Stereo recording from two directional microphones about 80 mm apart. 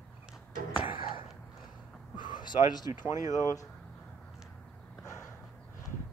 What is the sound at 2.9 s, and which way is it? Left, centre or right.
Speech, right.